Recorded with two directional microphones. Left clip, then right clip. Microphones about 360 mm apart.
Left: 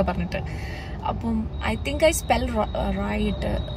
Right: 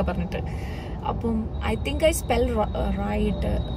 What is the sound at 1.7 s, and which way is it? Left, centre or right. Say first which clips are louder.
Speech: left 3 dB; centre.